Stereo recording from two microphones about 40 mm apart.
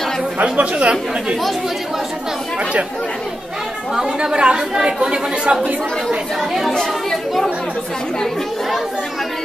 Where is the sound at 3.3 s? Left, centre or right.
Centre.